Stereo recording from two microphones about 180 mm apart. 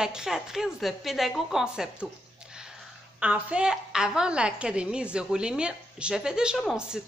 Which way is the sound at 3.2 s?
5° right (ahead or behind).